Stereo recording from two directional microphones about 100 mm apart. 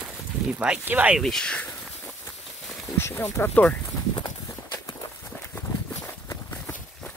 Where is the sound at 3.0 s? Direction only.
25° left (ahead or behind).